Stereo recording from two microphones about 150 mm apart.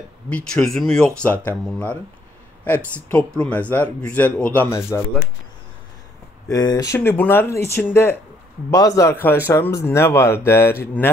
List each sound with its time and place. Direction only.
0.3 s speech: 5° left (ahead or behind)
2.7 s speech: 10° left (ahead or behind)
6.4 s a man's voice: 25° left (ahead or behind)
7.0 s a man's voice: 15° left (ahead or behind)